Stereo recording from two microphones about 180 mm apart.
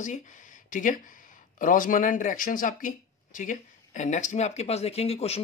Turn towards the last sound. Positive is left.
turn(degrees=35)  # may be behind; listen again after turning